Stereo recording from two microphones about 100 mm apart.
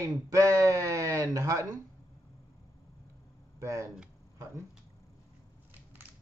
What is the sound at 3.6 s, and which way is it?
Speech, 30° right (ahead or behind).